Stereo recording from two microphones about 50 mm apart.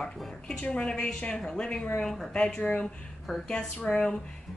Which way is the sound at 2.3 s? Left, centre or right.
Left.